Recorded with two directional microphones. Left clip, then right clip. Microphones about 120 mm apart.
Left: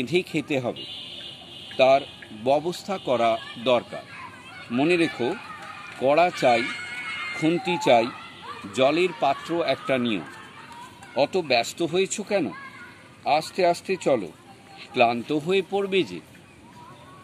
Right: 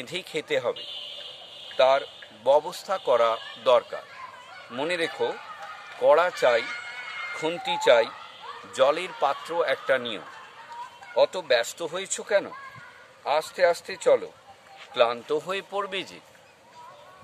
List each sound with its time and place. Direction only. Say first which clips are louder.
0.0 s speech: left 6 dB; 30° right (ahead or behind)
1.8 s speech: left 2 dB; 30° right (ahead or behind)
4.7 s speech: left 6 dB; 25° right (ahead or behind)
6.0 s speech: even; 35° right (ahead or behind)